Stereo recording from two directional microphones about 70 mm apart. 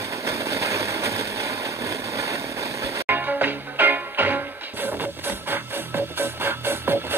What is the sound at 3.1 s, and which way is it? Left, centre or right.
Music, right.